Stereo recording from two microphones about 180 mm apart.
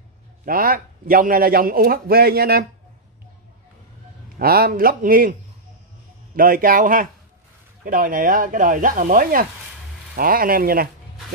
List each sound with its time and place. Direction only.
0.5 s a man's voice: 55° right (ahead or behind)
4.4 s speech: 55° right (ahead or behind)
6.3 s a man's voice: 50° right (ahead or behind)